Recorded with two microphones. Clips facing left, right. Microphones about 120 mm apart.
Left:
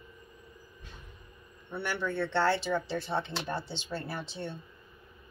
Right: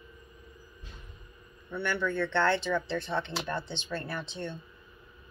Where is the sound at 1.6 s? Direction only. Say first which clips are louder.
Right 2 dB; 30° left (ahead or behind).